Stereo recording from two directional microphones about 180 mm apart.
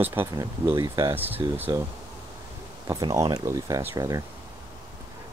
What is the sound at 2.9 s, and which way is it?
Speech, 20° right (ahead or behind).